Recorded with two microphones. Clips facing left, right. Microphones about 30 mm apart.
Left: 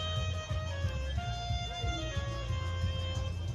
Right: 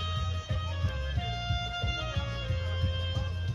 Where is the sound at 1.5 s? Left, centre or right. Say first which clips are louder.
Right 4 dB; right.